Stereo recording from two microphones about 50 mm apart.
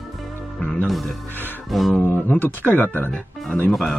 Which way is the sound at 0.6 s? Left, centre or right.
Left.